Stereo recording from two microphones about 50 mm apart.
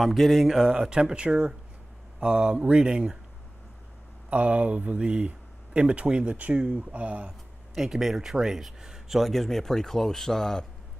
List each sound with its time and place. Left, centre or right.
0.0 s speech: centre
0.7 s speech: centre
4.3 s speech: right
7.7 s speech: centre
9.3 s a man's voice: centre